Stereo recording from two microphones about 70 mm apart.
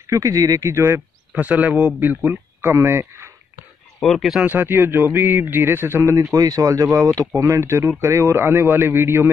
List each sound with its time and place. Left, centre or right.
0.0 s speech: right
1.3 s speech: right
2.0 s speech: right
4.0 s speech: centre
4.5 s speech: right
6.3 s speech: right